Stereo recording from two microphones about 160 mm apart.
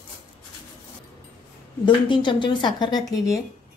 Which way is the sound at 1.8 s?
30° left (ahead or behind).